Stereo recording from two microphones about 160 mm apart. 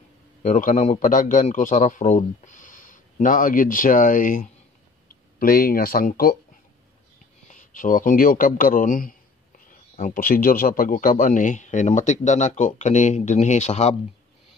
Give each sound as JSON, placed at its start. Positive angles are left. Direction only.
{"t": 0.4, "sound": "a man's voice", "side_deg": 50}
{"t": 7.4, "sound": "speech", "side_deg": 55}